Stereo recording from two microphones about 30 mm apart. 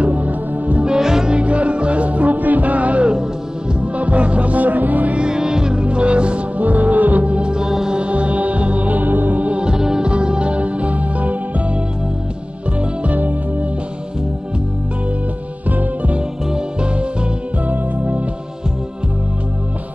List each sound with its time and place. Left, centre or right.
0.0 s music: right
0.9 s music: centre
1.3 s music: right
5.2 s music: right
5.8 s music: right
6.6 s music: right
7.4 s music: right
7.9 s music: right
9.8 s music: centre
10.0 s music: right
13.0 s music: right
15.7 s music: right
16.5 s music: right
17.6 s music: right